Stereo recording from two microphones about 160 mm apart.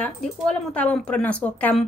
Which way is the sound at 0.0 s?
5° left (ahead or behind).